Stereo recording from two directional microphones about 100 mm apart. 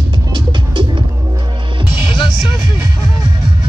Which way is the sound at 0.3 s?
50° right (ahead or behind).